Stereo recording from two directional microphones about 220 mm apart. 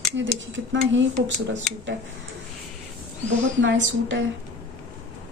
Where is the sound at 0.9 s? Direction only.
55° right (ahead or behind).